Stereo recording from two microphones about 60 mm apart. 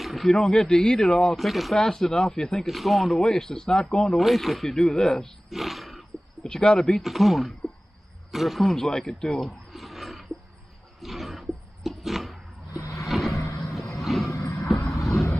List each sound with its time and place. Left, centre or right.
0.0 s speech: centre
2.6 s speech: centre
5.5 s wild animals: centre
6.5 s speech: centre
7.0 s speech: centre
9.7 s roaring cats: centre
12.9 s vehicle: centre
14.3 s vehicle: left